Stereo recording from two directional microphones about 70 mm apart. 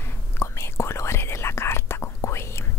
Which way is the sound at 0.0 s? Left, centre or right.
Left.